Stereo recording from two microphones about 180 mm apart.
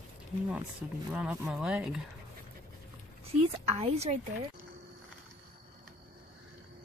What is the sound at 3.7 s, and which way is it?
Speech, 35° right (ahead or behind).